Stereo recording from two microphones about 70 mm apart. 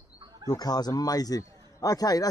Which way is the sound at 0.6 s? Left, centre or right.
Left.